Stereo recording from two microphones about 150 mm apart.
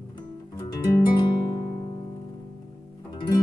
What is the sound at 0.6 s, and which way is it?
Guitar, 25° left (ahead or behind).